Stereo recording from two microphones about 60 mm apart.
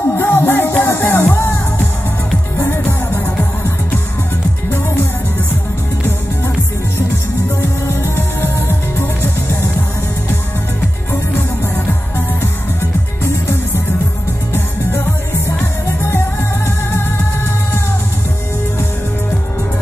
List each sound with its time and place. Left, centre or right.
0.1 s music: left
7.0 s music: left
11.3 s music: left